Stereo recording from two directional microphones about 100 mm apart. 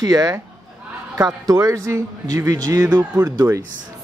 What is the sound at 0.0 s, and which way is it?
Speech, 40° right (ahead or behind).